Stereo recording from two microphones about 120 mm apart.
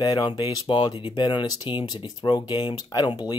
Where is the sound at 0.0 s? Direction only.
30° left (ahead or behind).